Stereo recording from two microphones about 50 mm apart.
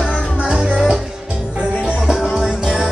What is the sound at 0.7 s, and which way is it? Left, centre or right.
Music, centre.